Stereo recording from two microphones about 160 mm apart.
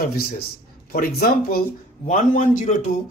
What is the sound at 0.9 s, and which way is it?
Speech, 70° left (ahead or behind).